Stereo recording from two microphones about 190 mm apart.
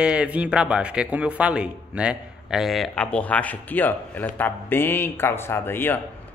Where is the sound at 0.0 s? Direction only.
5° right (ahead or behind).